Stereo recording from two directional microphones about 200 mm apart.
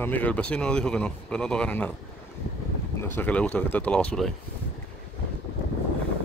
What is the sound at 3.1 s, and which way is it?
Speech, 5° left (ahead or behind).